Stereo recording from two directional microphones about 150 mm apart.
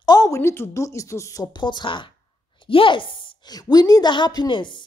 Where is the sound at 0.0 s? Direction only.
25° left (ahead or behind).